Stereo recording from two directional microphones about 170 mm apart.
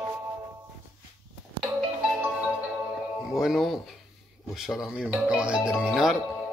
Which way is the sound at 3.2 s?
Centre (ahead or behind).